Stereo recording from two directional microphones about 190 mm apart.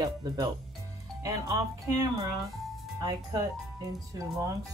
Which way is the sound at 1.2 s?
15° right (ahead or behind).